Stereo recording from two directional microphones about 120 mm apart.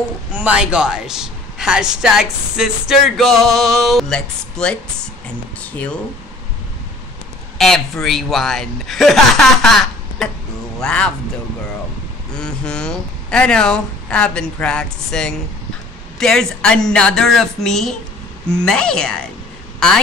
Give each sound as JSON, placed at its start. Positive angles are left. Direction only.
{"t": 0.3, "sound": "a woman's voice", "side_deg": -10}
{"t": 7.5, "sound": "a woman's voice", "side_deg": 5}
{"t": 12.4, "sound": "a woman's voice", "side_deg": 5}